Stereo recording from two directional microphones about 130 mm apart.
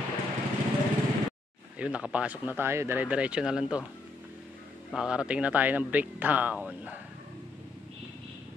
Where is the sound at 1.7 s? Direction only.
10° right (ahead or behind).